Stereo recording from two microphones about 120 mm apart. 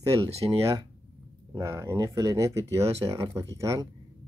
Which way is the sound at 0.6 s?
25° right (ahead or behind).